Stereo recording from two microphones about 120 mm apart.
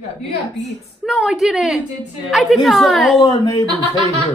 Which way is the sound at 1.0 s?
5° right (ahead or behind).